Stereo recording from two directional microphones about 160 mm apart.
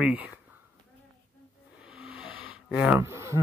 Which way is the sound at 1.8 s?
5° right (ahead or behind).